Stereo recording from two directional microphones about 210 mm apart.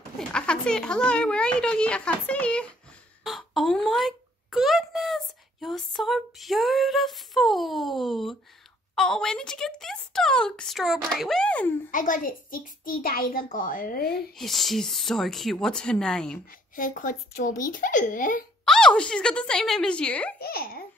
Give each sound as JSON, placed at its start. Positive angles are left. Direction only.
{"t": 0.3, "sound": "a child's voice", "side_deg": 5}
{"t": 11.9, "sound": "a child's voice", "side_deg": 40}
{"t": 14.3, "sound": "speech", "side_deg": 0}
{"t": 16.7, "sound": "a child's voice", "side_deg": 40}
{"t": 18.7, "sound": "speech", "side_deg": 5}
{"t": 20.3, "sound": "speech", "side_deg": 45}